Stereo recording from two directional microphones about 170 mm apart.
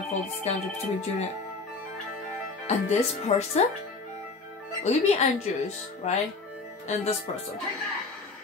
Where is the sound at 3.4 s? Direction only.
40° left (ahead or behind).